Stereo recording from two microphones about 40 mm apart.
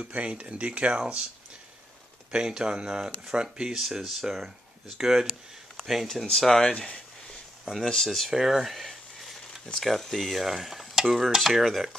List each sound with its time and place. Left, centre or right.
0.1 s speech: right
2.3 s speech: centre
6.3 s speech: centre
6.6 s a sound: centre
7.8 s speech: centre
8.3 s a sound: centre
9.8 s stir: centre